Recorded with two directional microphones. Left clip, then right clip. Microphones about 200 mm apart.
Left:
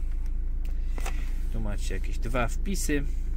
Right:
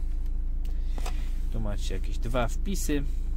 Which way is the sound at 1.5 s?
10° right (ahead or behind).